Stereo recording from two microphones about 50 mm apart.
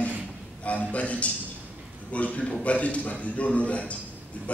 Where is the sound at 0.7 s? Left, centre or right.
Left.